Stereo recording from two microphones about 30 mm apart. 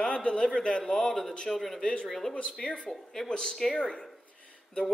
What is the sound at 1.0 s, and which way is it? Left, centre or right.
A man's voice, centre.